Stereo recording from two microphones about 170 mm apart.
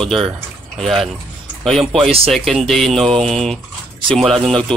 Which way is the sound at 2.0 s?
35° right (ahead or behind).